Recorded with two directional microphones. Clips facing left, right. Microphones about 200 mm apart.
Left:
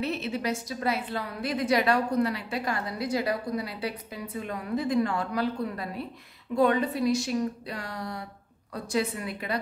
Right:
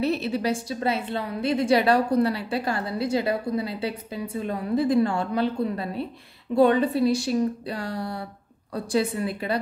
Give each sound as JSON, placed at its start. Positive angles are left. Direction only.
{"t": 0.0, "sound": "a woman's voice", "side_deg": -35}